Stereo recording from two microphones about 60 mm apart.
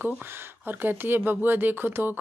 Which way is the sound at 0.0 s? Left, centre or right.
Right.